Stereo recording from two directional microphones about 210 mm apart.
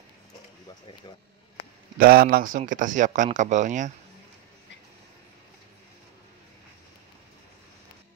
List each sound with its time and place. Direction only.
2.0 s speech: 45° right (ahead or behind)